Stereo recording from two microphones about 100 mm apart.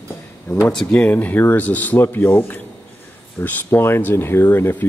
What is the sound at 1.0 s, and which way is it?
Speech, 15° left (ahead or behind).